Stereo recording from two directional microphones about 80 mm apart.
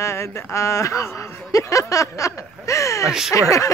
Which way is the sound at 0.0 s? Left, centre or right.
Left.